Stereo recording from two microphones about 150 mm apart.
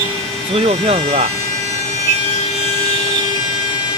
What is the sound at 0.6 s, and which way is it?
Speech, 45° right (ahead or behind).